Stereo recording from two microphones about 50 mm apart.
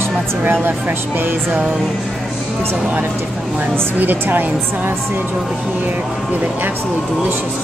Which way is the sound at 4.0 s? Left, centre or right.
Right.